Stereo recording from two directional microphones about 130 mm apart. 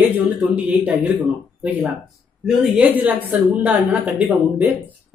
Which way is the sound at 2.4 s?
10° right (ahead or behind).